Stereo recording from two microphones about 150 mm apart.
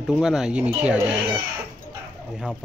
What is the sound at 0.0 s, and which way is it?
Speech, 5° right (ahead or behind).